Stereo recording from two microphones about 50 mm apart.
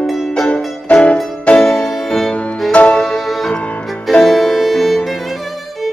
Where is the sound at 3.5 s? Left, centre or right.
Left.